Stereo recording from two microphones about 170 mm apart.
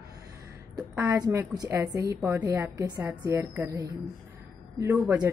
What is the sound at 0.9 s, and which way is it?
Speech, 20° right (ahead or behind).